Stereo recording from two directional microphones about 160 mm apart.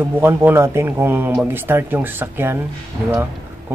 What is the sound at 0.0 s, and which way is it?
Speech, 15° right (ahead or behind).